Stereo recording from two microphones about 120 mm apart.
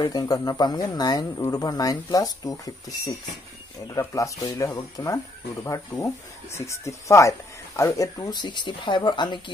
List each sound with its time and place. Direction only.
0.0 s speech: 35° left (ahead or behind)